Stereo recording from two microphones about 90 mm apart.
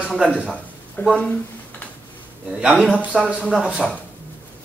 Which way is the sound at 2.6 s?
10° right (ahead or behind).